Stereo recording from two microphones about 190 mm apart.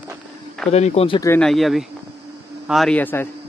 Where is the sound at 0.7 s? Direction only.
35° left (ahead or behind).